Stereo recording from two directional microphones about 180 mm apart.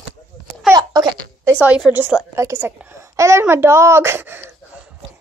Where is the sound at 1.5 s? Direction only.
5° right (ahead or behind).